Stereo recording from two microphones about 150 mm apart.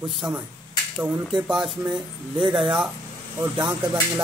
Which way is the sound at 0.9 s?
10° right (ahead or behind).